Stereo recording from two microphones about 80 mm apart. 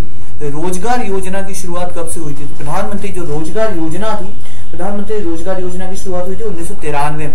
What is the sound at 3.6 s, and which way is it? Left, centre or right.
Speech, centre.